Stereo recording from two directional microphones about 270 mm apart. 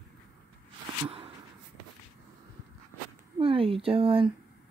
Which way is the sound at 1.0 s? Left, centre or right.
Right.